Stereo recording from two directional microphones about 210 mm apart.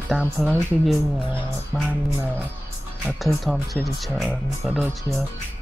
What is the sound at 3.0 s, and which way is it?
Speech, centre (ahead or behind).